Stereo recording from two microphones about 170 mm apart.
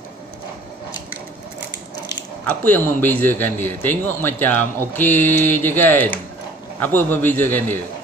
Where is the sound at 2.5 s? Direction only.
10° left (ahead or behind).